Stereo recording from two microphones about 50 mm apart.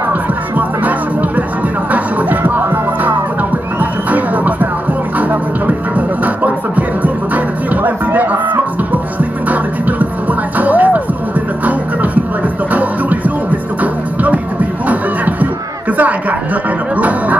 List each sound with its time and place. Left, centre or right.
0.6 s music: right
14.2 s music: right
16.0 s chuckle: right
16.9 s music: right